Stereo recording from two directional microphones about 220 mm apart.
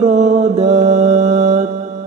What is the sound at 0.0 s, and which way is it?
Mantra, 30° right (ahead or behind).